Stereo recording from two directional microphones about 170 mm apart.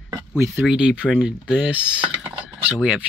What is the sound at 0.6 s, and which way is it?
Speech, 5° right (ahead or behind).